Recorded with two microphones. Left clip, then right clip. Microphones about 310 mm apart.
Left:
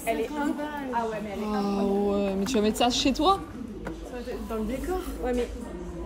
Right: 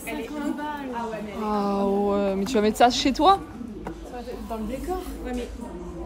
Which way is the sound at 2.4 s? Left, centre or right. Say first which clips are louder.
Right 7 dB; centre.